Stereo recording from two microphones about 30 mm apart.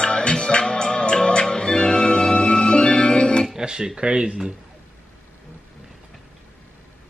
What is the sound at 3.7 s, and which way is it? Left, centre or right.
Speech, right.